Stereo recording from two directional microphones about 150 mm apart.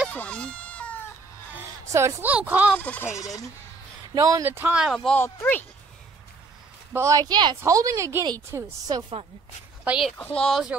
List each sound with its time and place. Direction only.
0.1 s a sound: 10° left (ahead or behind)
1.9 s speech: 20° right (ahead or behind)
2.7 s speech: 10° left (ahead or behind)
4.1 s speech: 20° right (ahead or behind); by 5.7 s 15° left (ahead or behind)
6.9 s speech: 20° right (ahead or behind)
9.8 s speech: centre (ahead or behind)